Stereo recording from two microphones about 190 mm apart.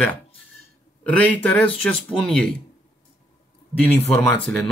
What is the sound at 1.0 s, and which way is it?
Speech, 10° left (ahead or behind).